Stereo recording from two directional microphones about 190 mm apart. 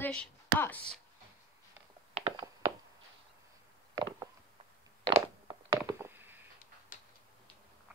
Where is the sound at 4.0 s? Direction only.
25° right (ahead or behind).